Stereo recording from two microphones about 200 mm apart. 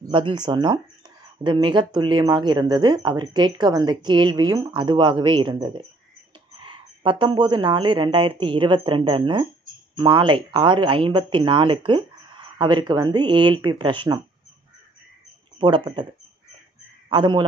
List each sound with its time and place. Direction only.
0.0 s speech: 25° right (ahead or behind)
15.6 s speech: 25° right (ahead or behind)
17.1 s speech: 25° right (ahead or behind)